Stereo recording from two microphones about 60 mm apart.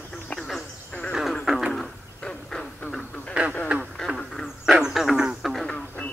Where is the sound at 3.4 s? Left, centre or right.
Centre.